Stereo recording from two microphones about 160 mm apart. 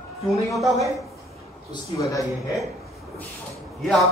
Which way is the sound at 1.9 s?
20° left (ahead or behind).